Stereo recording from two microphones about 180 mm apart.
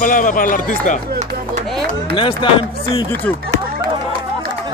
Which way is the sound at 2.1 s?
30° left (ahead or behind).